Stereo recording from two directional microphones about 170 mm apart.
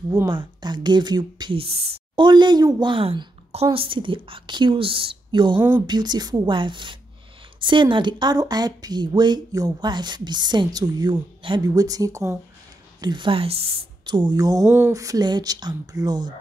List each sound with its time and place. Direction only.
0.3 s a woman's voice: 25° right (ahead or behind)
5.6 s speech: 10° right (ahead or behind)
5.9 s a woman's voice: 25° right (ahead or behind)